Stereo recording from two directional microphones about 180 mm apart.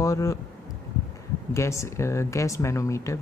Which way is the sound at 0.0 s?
20° left (ahead or behind).